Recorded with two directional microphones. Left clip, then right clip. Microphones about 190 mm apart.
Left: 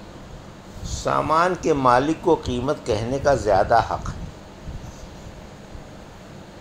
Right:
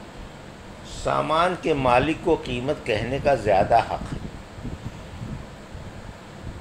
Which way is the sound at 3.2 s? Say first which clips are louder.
Left 1 dB; 30° left (ahead or behind).